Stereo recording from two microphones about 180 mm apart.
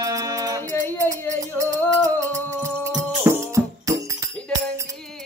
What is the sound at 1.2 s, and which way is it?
Music, 15° right (ahead or behind).